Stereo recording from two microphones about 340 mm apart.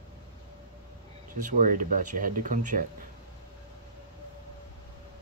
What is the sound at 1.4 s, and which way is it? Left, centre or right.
Speech, right.